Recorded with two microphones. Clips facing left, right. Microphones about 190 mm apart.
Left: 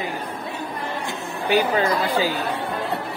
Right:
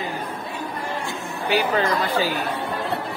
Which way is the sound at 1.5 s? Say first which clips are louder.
Left 2 dB; 15° left (ahead or behind).